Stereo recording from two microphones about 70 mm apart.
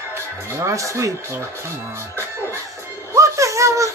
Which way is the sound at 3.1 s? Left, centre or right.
Right.